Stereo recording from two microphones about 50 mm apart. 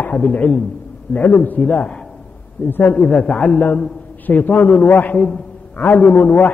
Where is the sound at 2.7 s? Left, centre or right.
Left.